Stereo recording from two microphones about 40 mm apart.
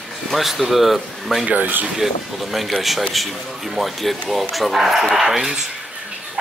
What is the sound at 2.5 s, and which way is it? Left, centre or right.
Speech, centre.